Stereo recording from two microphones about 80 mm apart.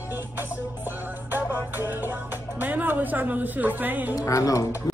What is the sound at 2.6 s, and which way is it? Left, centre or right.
Speech, right.